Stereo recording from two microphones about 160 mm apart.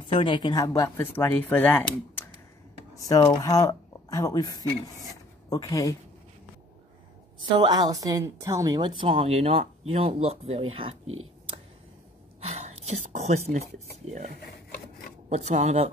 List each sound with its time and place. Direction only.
0.1 s a woman's voice: 30° left (ahead or behind)
0.9 s a woman's voice: 10° left (ahead or behind)
7.5 s a woman's voice: 25° right (ahead or behind)
12.4 s speech: 45° right (ahead or behind)